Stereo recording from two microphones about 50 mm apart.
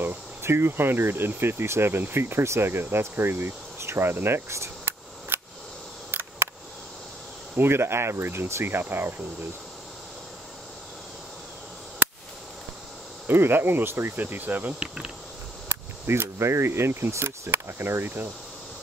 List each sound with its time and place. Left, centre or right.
0.0 s speech: right
5.3 s a sound: right
7.5 s speech: right
13.3 s speech: right
14.2 s cricket: right
16.1 s speech: right